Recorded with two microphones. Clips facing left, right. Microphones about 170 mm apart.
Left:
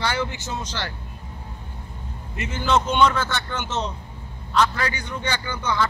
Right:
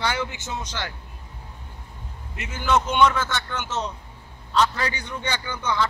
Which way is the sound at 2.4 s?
5° right (ahead or behind).